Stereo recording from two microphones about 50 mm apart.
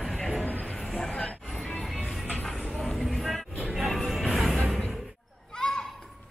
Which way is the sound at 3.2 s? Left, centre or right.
Centre.